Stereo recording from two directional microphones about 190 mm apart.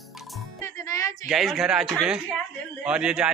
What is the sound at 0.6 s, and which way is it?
Music, 15° left (ahead or behind).